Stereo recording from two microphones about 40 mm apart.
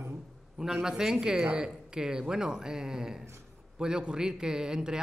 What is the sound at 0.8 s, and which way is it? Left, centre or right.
A man's voice, centre.